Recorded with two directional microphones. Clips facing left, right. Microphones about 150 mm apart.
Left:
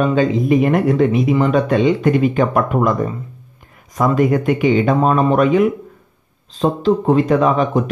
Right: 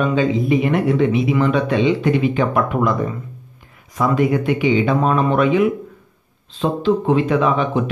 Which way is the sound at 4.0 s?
45° left (ahead or behind).